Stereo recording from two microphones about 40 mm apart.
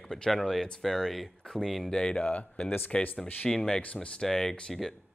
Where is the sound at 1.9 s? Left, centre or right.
Centre.